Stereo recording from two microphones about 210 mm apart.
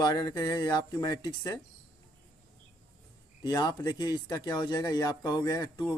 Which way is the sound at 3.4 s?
20° left (ahead or behind).